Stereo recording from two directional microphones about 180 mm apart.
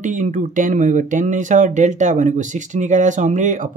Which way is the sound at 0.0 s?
45° right (ahead or behind).